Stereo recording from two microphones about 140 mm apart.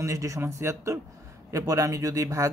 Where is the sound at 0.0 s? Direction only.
20° right (ahead or behind).